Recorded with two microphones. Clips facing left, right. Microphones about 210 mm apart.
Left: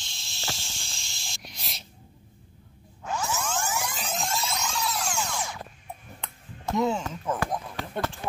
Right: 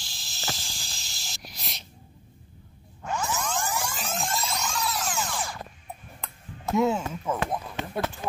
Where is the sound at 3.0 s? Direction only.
10° left (ahead or behind).